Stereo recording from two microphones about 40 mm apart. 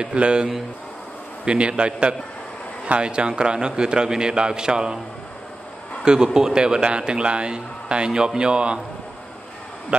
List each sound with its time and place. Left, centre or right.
0.0 s a man's voice: right
6.0 s a man's voice: centre